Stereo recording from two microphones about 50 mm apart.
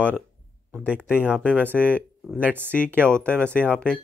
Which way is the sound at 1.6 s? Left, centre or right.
Left.